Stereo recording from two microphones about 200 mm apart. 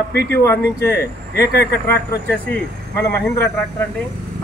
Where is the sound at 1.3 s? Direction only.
55° left (ahead or behind).